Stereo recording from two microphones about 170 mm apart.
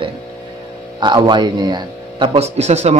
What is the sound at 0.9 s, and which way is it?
Speech, 25° right (ahead or behind).